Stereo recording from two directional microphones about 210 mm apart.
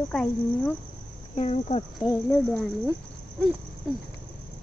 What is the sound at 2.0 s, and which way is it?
Speech, 5° left (ahead or behind).